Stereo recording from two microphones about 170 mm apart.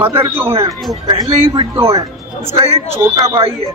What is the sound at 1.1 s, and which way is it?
Speech, 25° right (ahead or behind).